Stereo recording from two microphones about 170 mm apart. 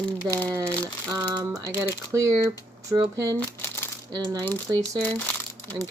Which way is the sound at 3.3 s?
15° left (ahead or behind).